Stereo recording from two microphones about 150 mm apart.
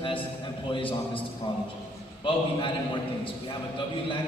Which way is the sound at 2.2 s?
35° left (ahead or behind).